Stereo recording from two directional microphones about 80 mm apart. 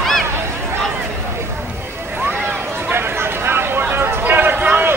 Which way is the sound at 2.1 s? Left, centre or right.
Right.